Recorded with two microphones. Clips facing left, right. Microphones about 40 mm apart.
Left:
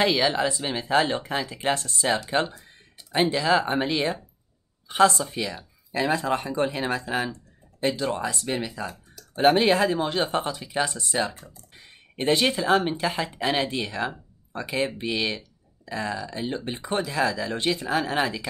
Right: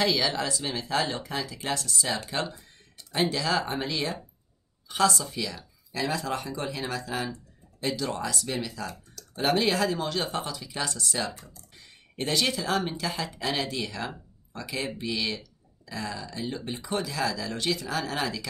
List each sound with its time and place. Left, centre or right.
0.0 s speech: left
9.3 s speech: left